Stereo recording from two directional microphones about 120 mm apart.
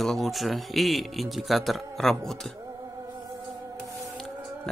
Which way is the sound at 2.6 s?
30° right (ahead or behind).